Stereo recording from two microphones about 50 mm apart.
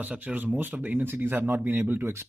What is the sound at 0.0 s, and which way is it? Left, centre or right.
Speech, right.